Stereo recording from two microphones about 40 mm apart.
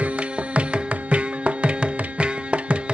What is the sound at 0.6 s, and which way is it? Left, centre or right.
Music, right.